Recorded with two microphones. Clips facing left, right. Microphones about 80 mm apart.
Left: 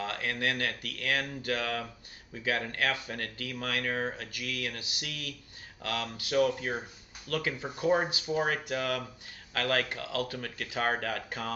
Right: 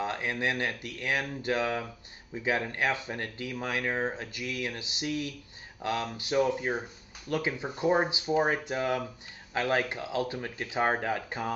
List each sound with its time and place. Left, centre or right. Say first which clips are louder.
0.0 s speech: right 2 dB; right